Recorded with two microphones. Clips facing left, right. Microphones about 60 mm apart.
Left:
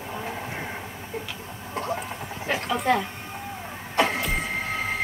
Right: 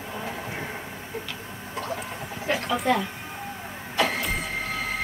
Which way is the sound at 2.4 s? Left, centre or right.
Centre.